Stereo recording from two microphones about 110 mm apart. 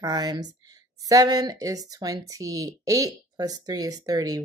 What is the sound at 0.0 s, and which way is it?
A woman's voice, 35° right (ahead or behind).